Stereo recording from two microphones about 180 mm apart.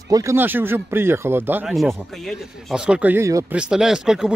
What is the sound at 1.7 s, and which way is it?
Speech, centre (ahead or behind).